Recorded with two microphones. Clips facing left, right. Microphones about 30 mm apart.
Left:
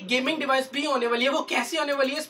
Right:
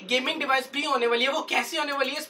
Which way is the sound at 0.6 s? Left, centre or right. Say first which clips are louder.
Left 1 dB; right.